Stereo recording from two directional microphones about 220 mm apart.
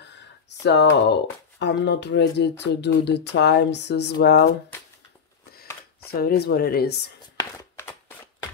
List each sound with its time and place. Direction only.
0.7 s speech: 50° left (ahead or behind)
6.0 s speech: 45° left (ahead or behind)
7.3 s a sound: 15° left (ahead or behind)